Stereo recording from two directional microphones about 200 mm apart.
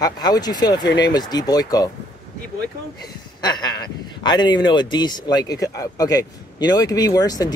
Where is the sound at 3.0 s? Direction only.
20° left (ahead or behind).